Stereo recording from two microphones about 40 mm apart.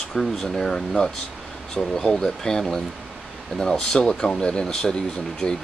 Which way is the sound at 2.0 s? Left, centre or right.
Centre.